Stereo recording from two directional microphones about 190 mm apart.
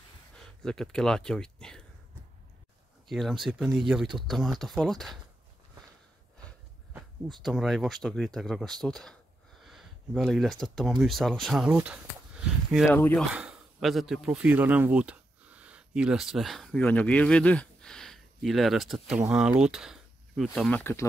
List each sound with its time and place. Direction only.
0.6 s speech: 5° left (ahead or behind)
3.1 s speech: centre (ahead or behind)
7.4 s speech: centre (ahead or behind)
12.9 s speech: 10° left (ahead or behind)
13.3 s speech: 5° right (ahead or behind)